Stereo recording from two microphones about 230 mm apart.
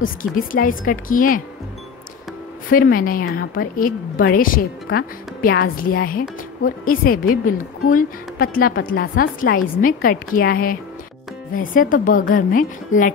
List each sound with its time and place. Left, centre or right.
0.2 s a woman's voice: left
2.7 s a woman's voice: left